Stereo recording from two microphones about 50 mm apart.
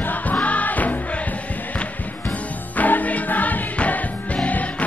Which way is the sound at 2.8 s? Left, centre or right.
Left.